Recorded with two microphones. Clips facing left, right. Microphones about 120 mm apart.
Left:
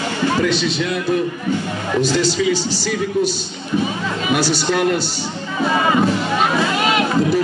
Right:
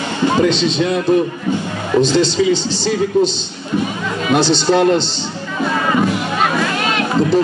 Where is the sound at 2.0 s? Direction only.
20° right (ahead or behind).